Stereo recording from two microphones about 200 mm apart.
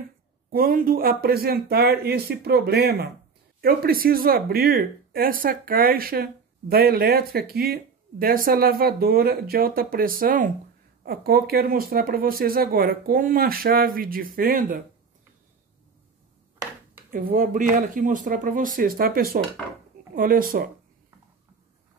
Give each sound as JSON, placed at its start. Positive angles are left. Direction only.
{"t": 0.5, "sound": "speech", "side_deg": -45}
{"t": 17.1, "sound": "speech", "side_deg": -45}